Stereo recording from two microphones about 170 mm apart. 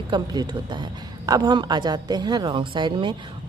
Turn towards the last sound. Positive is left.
turn(degrees=-30)  # may be behind; listen again after turning